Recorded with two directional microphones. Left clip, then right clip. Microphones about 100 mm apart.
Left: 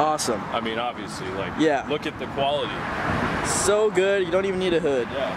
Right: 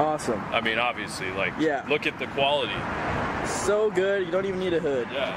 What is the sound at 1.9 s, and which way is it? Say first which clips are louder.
Speech: right 1 dB; 10° right (ahead or behind).